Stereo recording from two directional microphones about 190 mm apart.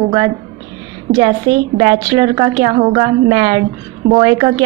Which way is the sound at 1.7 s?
20° right (ahead or behind).